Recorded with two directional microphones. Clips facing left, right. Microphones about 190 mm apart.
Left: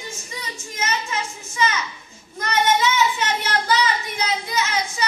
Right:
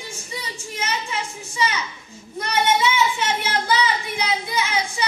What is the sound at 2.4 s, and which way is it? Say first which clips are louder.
Child singing: even; 10° right (ahead or behind).